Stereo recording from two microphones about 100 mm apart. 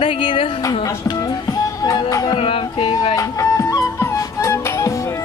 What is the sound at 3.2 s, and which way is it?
Music, 35° left (ahead or behind).